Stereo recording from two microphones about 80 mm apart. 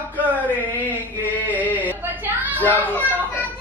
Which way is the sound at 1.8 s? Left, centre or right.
Right.